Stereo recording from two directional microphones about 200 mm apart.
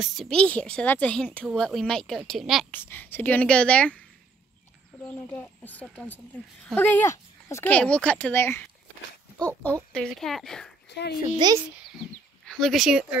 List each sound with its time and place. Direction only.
0.0 s a woman's voice: centre (ahead or behind)
5.0 s speech: 5° left (ahead or behind)
9.9 s a woman's voice: centre (ahead or behind)
10.9 s a child's voice: 60° left (ahead or behind)
11.3 s a child's voice: 20° right (ahead or behind)
12.1 s speech: centre (ahead or behind)